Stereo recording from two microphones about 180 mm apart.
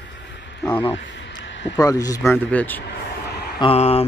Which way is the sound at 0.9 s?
90° left.